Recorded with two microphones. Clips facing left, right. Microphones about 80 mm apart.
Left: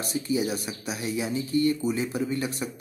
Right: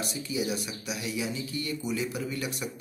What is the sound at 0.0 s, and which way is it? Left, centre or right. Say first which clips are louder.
Speech: left 5 dB; left.